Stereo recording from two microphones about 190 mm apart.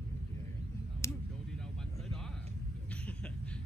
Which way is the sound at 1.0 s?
15° left (ahead or behind).